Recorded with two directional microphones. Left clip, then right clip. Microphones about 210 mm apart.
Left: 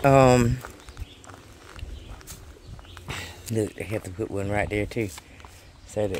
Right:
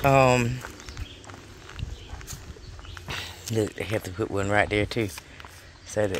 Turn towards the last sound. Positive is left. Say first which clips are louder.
# right 1 dB
turn(degrees=0)  # may be behind; listen again after turning